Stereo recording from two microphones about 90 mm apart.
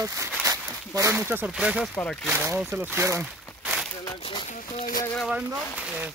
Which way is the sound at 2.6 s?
25° right (ahead or behind).